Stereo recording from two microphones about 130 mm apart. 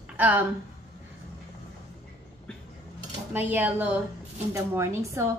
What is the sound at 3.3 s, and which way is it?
Speech, 15° right (ahead or behind).